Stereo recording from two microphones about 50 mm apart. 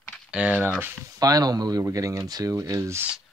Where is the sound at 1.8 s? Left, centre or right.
Right.